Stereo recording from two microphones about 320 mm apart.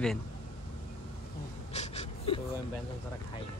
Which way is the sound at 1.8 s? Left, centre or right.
Centre.